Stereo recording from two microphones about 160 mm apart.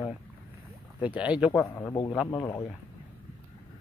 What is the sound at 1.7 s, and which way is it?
Speech, 15° left (ahead or behind).